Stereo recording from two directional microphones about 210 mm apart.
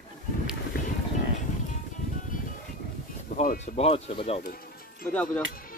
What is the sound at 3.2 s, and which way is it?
Speech, 40° left (ahead or behind).